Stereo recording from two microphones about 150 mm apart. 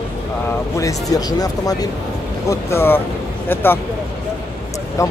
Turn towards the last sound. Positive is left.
turn(degrees=20)  # may be behind; listen again after turning